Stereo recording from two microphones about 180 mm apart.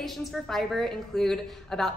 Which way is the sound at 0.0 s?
Centre (ahead or behind).